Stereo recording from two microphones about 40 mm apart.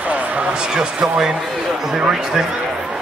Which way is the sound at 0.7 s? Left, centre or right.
Centre.